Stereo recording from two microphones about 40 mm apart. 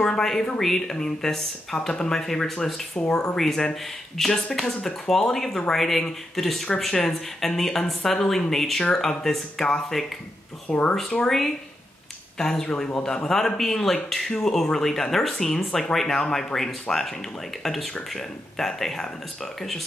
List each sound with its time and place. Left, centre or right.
0.0 s speech: centre
2.9 s speech: left
3.3 s speech: centre
10.7 s speech: left
11.2 s speech: centre
17.6 s speech: centre